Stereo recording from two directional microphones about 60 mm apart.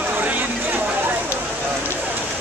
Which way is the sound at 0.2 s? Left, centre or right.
Right.